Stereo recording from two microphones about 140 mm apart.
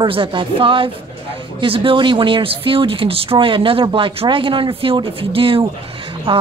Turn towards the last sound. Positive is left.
turn(degrees=-40)  # may be behind; listen again after turning